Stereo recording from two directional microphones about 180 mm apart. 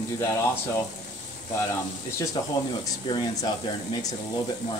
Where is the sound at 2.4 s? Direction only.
20° left (ahead or behind).